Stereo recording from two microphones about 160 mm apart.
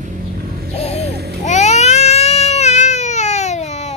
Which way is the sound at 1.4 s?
45° left (ahead or behind).